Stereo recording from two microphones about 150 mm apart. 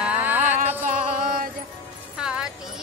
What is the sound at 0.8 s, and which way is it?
Mantra, 60° right (ahead or behind).